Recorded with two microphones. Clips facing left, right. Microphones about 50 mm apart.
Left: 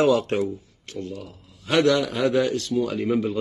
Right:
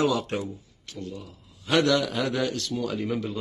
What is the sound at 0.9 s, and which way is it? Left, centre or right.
Speech, left.